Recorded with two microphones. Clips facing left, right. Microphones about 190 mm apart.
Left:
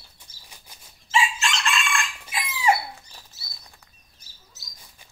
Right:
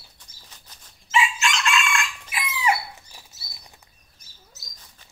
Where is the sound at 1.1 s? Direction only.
30° left (ahead or behind).